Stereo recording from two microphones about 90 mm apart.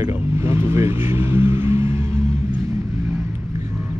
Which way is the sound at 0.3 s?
30° right (ahead or behind).